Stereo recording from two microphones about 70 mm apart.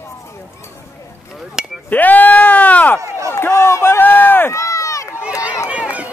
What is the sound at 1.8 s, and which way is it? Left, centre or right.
Bleat, left.